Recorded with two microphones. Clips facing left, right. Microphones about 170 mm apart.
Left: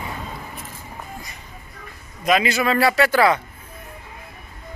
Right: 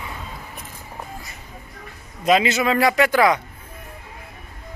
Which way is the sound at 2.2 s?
25° right (ahead or behind).